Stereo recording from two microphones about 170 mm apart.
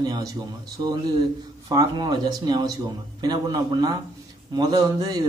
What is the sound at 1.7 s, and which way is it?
Speech, 25° right (ahead or behind).